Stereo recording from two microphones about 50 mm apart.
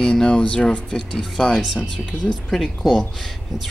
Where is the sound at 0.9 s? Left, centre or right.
Centre.